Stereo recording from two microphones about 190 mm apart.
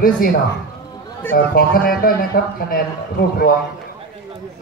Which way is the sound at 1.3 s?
50° left (ahead or behind).